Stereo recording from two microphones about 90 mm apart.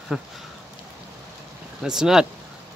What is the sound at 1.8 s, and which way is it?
Speech, 5° right (ahead or behind).